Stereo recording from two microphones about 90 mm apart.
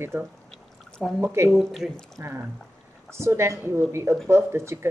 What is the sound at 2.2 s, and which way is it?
A woman's voice, 25° right (ahead or behind).